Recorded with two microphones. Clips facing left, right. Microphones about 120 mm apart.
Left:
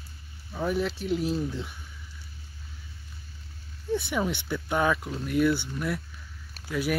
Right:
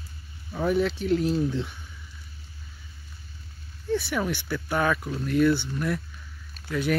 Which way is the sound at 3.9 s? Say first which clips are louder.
Right 1 dB; 20° left (ahead or behind).